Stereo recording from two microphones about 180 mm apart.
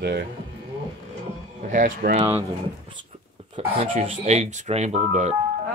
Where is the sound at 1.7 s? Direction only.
50° right (ahead or behind).